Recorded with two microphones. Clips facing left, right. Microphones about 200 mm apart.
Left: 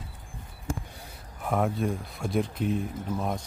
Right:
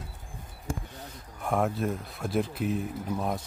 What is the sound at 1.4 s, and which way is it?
Speech, centre (ahead or behind).